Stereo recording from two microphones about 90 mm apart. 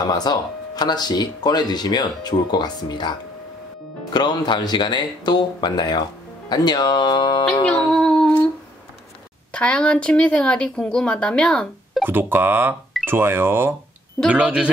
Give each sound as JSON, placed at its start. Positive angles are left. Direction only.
{"t": 0.0, "sound": "speech", "side_deg": 50}
{"t": 7.9, "sound": "humming", "side_deg": 5}
{"t": 9.5, "sound": "speech", "side_deg": 15}
{"t": 12.0, "sound": "speech", "side_deg": -25}
{"t": 14.3, "sound": "a man's voice", "side_deg": -10}